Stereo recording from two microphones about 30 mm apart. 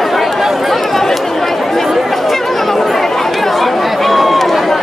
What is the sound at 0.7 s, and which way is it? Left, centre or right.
Speech, centre.